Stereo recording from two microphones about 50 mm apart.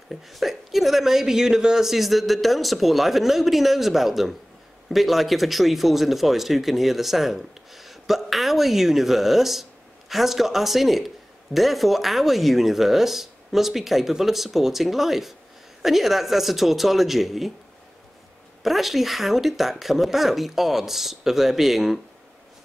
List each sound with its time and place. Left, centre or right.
0.1 s speech: centre
18.6 s speech: centre